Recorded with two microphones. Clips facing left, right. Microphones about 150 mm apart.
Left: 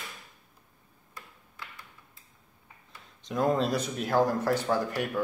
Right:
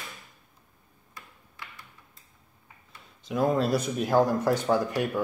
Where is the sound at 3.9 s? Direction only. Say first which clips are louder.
Right 2 dB; 15° right (ahead or behind).